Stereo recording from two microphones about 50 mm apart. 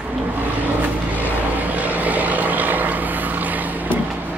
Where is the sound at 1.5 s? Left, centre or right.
Right.